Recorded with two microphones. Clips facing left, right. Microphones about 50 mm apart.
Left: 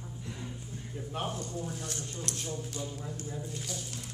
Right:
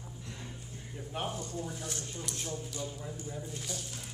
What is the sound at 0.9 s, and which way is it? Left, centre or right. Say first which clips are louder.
Speech: left 1 dB; centre.